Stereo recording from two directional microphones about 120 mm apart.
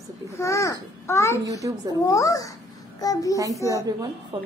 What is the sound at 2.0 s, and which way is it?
A child's voice, 30° left (ahead or behind).